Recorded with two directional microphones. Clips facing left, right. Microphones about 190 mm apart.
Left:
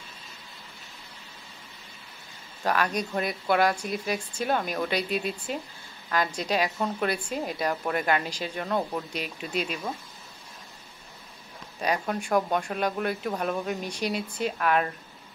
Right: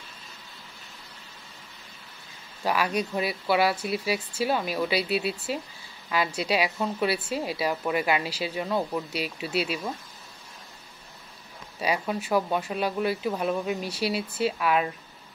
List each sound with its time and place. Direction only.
2.6 s a woman's voice: 10° right (ahead or behind)
11.8 s speech: 5° right (ahead or behind)